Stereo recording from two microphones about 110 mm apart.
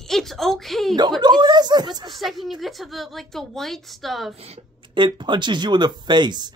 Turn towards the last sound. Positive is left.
turn(degrees=-40)  # may be behind; listen again after turning